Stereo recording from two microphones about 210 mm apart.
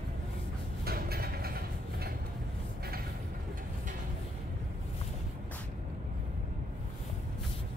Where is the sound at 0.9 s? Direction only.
45° right (ahead or behind).